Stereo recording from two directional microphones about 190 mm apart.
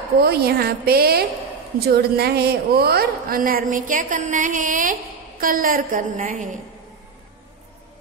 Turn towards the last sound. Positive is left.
turn(degrees=-45)  # may be behind; listen again after turning